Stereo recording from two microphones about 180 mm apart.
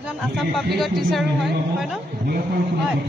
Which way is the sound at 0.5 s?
Centre (ahead or behind).